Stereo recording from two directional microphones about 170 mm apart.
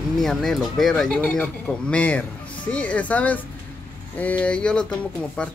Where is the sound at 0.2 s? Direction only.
5° left (ahead or behind).